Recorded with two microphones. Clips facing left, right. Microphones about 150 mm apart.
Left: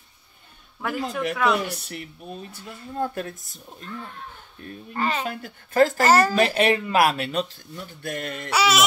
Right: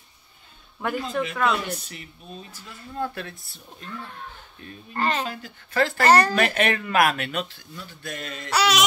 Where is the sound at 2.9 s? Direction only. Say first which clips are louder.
Left 3 dB; 40° left (ahead or behind).